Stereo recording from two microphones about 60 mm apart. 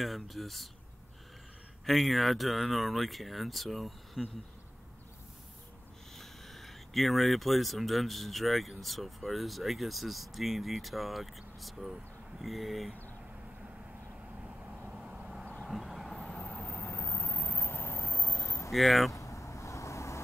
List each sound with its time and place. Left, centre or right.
0.0 s speech: centre
1.9 s speech: centre
6.1 s speech: centre
14.4 s vehicle: centre
16.8 s vehicle: left
17.2 s vehicle: left
18.7 s speech: centre
19.1 s vehicle: left